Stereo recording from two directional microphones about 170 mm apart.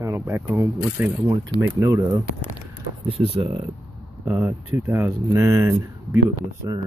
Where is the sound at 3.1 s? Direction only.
35° right (ahead or behind).